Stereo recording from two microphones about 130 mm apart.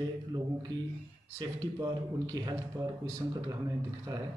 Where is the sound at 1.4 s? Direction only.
30° right (ahead or behind).